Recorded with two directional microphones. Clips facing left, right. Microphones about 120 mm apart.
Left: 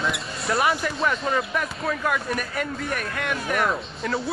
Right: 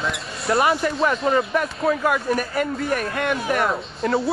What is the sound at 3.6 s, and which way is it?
Speech, 30° right (ahead or behind).